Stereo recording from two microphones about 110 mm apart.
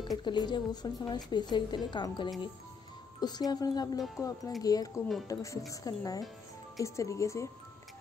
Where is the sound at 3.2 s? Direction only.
40° left (ahead or behind).